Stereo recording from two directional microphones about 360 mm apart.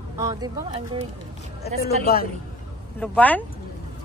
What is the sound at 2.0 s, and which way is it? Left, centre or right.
Speech, left.